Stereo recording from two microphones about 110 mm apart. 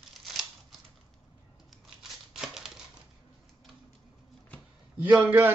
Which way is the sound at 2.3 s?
5° right (ahead or behind).